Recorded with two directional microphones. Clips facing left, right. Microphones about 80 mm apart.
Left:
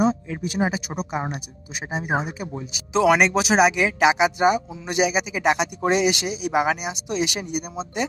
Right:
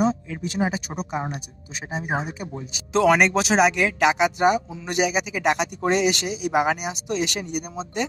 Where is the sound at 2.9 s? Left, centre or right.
Centre.